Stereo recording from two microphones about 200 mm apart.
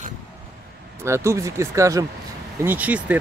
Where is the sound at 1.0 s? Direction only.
15° right (ahead or behind).